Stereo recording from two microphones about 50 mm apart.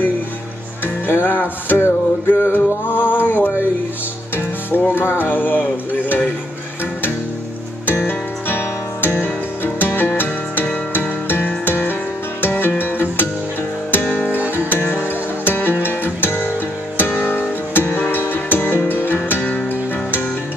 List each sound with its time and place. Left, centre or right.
1.0 s music: left
4.6 s music: left
8.1 s music: left
15.4 s music: left